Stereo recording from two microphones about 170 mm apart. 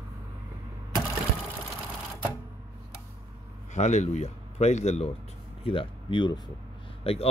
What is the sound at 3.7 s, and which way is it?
A man's voice, 40° left (ahead or behind).